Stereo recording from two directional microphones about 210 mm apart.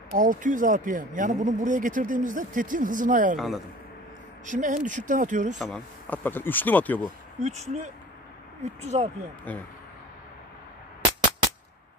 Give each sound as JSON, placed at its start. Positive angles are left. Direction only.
{"t": 0.1, "sound": "speech", "side_deg": -40}
{"t": 3.3, "sound": "speech", "side_deg": 0}
{"t": 4.5, "sound": "speech", "side_deg": -35}
{"t": 5.6, "sound": "speech", "side_deg": 5}
{"t": 7.3, "sound": "speech", "side_deg": -30}
{"t": 9.5, "sound": "speech", "side_deg": 5}